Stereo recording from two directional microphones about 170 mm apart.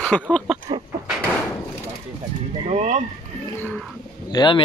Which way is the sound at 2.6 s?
40° right (ahead or behind).